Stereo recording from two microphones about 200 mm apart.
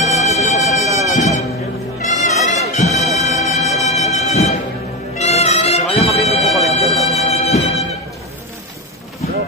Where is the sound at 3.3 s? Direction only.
35° left (ahead or behind).